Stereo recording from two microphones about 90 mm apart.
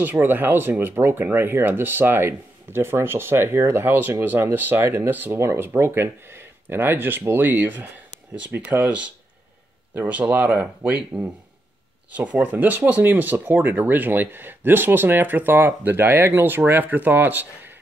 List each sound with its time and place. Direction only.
0.0 s speech: 20° right (ahead or behind)